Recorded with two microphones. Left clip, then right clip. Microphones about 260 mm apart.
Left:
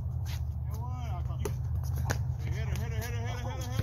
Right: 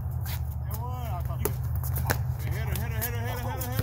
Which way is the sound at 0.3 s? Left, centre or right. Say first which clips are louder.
Right 6 dB; centre.